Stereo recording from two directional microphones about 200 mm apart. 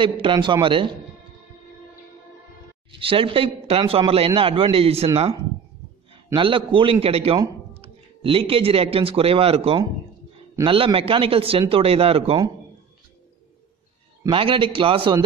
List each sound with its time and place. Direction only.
0.0 s a man's voice: 25° right (ahead or behind)
3.0 s a man's voice: 25° right (ahead or behind)
6.3 s a man's voice: 25° right (ahead or behind)
14.2 s a man's voice: 25° right (ahead or behind)